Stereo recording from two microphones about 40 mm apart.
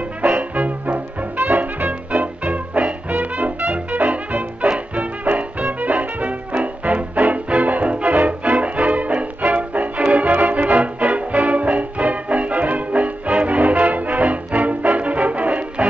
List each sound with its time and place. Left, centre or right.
0.2 s music: right